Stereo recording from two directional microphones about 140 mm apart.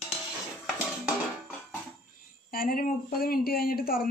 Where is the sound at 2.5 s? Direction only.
90° left.